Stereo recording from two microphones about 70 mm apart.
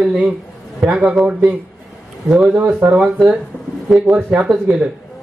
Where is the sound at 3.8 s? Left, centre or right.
Centre.